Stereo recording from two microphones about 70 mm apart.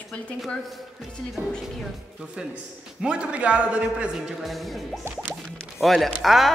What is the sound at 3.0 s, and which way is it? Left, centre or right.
A man's voice, centre.